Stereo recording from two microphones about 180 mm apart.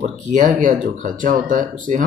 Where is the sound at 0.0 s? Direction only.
45° right (ahead or behind).